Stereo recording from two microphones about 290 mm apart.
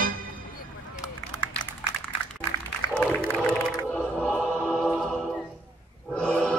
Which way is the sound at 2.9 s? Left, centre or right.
Centre.